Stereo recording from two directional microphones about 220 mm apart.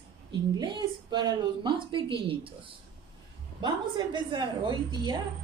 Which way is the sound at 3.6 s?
20° right (ahead or behind).